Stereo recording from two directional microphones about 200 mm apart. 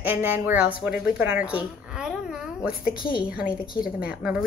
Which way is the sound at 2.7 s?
45° left (ahead or behind).